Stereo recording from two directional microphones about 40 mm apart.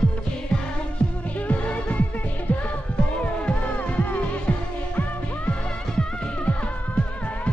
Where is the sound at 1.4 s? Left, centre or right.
Left.